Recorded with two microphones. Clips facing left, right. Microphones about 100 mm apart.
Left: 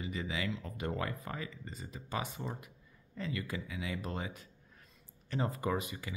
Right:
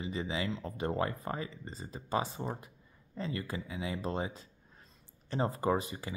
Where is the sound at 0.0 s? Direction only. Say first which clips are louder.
Right 2 dB; 30° right (ahead or behind).